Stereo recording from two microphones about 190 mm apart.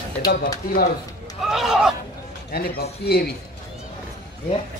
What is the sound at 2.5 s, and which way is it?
Speech, 55° left (ahead or behind).